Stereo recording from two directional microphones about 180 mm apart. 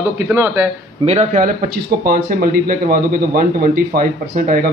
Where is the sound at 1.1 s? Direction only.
40° right (ahead or behind).